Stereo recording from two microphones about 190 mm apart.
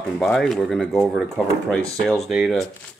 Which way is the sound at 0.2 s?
Centre (ahead or behind).